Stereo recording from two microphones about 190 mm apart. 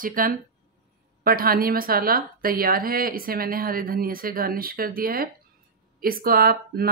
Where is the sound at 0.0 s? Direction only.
50° right (ahead or behind).